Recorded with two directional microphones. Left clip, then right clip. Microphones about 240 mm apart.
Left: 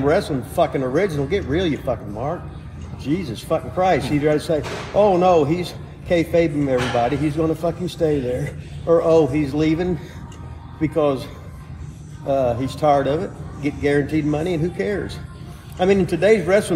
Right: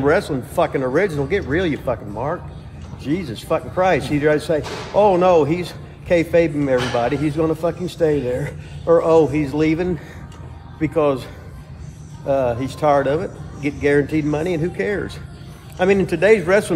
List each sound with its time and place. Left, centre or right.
0.0 s speech: centre
12.3 s speech: centre